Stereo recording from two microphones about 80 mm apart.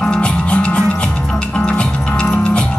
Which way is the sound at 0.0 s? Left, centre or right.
Centre.